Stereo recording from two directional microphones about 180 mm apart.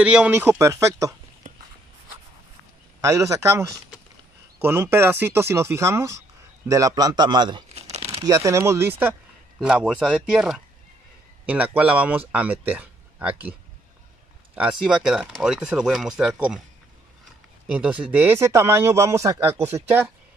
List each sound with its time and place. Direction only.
0.0 s speech: 5° right (ahead or behind)
1.5 s walk: 45° right (ahead or behind)
3.0 s speech: 15° right (ahead or behind)
7.8 s crumpling: 35° right (ahead or behind)
8.2 s speech: 20° right (ahead or behind)
17.6 s speech: 5° right (ahead or behind)